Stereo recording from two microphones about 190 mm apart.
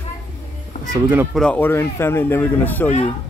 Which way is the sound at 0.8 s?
40° left (ahead or behind).